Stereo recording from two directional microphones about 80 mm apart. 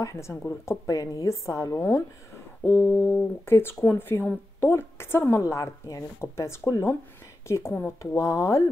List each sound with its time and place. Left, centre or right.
0.0 s a woman's voice: left
2.6 s a woman's voice: left
3.4 s a woman's voice: left
5.4 s a woman's voice: left
6.3 s a woman's voice: left